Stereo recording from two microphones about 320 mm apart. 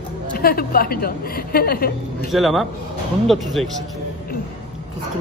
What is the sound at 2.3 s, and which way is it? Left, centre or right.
Speech, centre.